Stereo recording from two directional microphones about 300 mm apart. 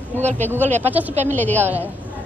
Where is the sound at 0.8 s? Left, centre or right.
Centre.